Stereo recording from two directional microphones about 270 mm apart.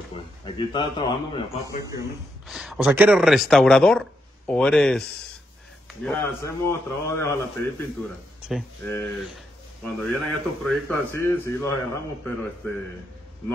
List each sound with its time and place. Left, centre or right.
0.1 s a man's voice: centre
2.4 s a man's voice: centre
8.5 s a man's voice: centre